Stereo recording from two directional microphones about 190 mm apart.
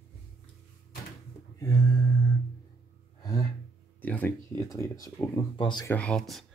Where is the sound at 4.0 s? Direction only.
10° left (ahead or behind); by 5.8 s 25° left (ahead or behind).